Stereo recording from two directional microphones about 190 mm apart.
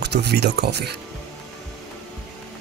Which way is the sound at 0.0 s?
60° right (ahead or behind).